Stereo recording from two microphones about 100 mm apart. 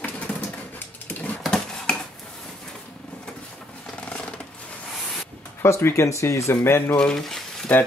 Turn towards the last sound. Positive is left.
turn(degrees=5)  # may be behind; listen again after turning